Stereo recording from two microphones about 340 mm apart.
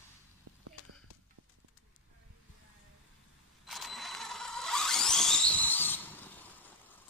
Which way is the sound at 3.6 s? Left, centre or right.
Centre.